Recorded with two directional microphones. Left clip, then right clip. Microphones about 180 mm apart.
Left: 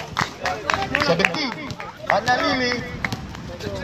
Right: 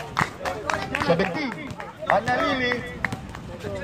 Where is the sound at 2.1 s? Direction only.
20° right (ahead or behind).